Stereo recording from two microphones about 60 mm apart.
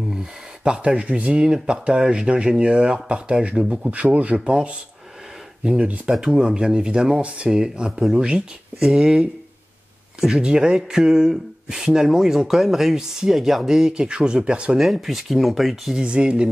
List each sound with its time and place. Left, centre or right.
0.1 s speech: centre
14.8 s speech: centre
16.0 s speech: centre